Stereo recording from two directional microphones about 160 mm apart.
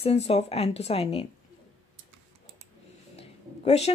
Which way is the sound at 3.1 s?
40° left (ahead or behind).